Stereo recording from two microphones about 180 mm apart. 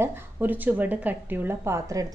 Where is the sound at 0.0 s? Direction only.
10° right (ahead or behind).